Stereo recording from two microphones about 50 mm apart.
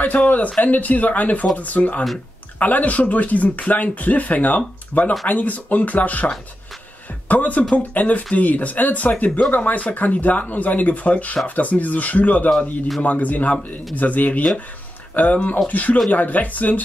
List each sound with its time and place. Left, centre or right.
0.0 s speech: left
12.4 s speech: centre
13.0 s speech: left